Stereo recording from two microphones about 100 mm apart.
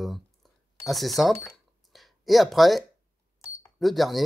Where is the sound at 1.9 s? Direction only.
Centre (ahead or behind).